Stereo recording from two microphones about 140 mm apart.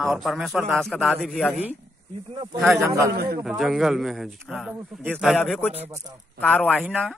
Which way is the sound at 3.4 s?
Centre (ahead or behind).